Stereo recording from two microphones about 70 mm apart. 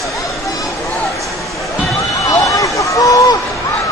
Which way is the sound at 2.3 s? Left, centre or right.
Left.